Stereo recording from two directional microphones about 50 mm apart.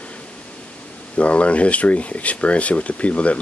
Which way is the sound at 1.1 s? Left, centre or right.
Left.